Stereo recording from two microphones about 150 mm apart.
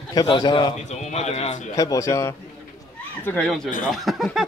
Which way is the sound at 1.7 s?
20° left (ahead or behind).